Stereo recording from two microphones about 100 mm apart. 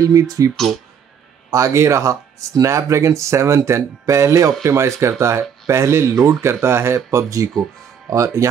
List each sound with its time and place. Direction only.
0.0 s speech: 35° right (ahead or behind)
1.5 s speech: 30° right (ahead or behind)